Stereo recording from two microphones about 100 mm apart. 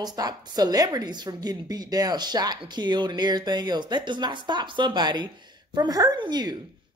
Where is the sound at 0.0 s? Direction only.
40° right (ahead or behind).